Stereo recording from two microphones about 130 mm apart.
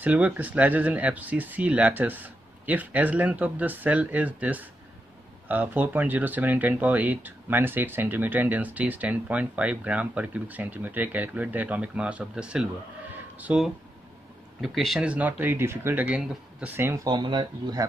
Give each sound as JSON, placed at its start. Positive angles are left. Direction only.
{"t": 0.0, "sound": "speech", "side_deg": -10}
{"t": 13.1, "sound": "a sound", "side_deg": -10}
{"t": 14.6, "sound": "speech", "side_deg": 0}